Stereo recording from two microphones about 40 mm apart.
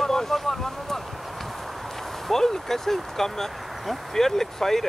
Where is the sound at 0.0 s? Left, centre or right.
Centre.